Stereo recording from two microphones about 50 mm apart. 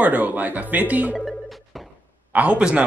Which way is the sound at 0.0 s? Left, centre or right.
Right.